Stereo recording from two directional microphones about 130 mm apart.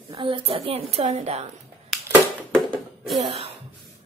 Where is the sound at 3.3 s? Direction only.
50° right (ahead or behind).